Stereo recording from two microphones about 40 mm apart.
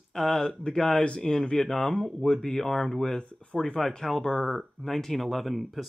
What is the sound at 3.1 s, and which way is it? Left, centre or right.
Speech, left.